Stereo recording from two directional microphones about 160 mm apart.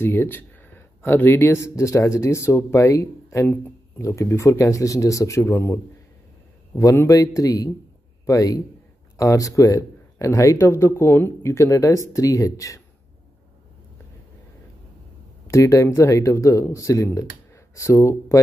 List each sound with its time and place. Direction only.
0.0 s speech: 15° left (ahead or behind)
15.4 s speech: 20° left (ahead or behind)